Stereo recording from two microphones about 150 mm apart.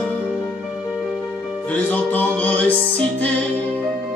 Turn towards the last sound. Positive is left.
turn(degrees=10)  # may be behind; listen again after turning